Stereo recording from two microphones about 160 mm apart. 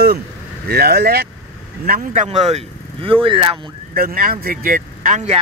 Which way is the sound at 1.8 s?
60° right (ahead or behind).